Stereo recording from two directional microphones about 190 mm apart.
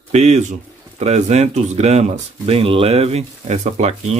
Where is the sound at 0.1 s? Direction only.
35° right (ahead or behind).